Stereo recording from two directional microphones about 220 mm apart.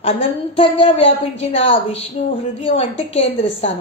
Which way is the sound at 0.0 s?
25° left (ahead or behind).